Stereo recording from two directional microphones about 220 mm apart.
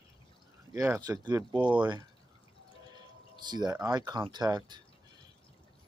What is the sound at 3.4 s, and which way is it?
Speech, 20° right (ahead or behind).